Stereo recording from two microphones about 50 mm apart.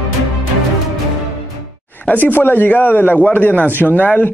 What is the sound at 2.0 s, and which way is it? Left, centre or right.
A man's voice, left.